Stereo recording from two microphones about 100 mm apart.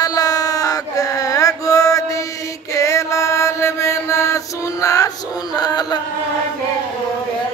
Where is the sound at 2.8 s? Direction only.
30° left (ahead or behind).